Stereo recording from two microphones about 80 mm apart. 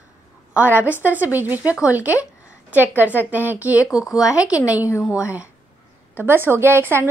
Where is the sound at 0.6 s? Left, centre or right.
Right.